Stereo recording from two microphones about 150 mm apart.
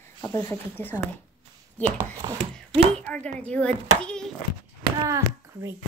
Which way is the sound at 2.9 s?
10° left (ahead or behind).